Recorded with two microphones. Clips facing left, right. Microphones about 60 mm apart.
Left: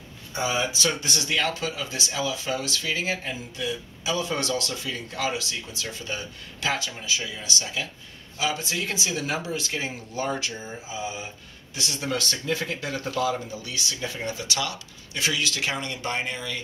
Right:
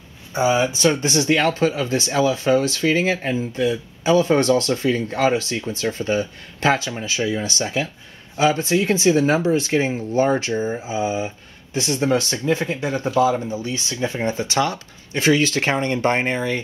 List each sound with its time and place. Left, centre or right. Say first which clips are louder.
0.3 s speech: right 8 dB; right